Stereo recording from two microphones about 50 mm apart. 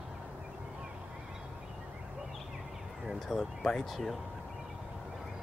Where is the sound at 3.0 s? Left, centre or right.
Centre.